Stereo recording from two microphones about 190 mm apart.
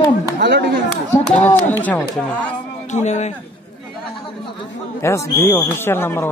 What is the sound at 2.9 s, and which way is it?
Speech, 35° left (ahead or behind).